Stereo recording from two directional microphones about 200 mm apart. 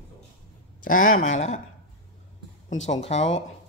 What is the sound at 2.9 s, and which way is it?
Speech, 35° left (ahead or behind).